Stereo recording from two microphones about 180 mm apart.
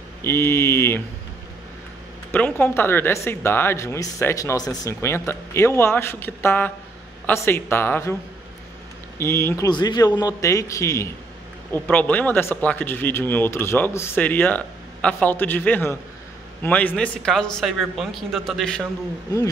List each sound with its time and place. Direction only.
0.2 s speech: 15° left (ahead or behind)
2.6 s speech: 10° left (ahead or behind)
9.2 s speech: 15° left (ahead or behind)